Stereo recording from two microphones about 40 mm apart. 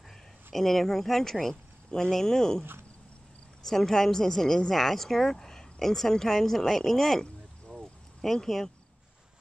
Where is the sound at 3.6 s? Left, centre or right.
Centre.